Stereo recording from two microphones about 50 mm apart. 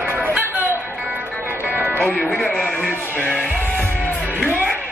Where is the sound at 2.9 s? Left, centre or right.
Left.